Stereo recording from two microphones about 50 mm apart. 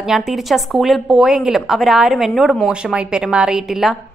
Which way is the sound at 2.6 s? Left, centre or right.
Centre.